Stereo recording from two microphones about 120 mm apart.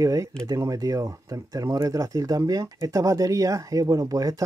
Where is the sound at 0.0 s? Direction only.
25° right (ahead or behind).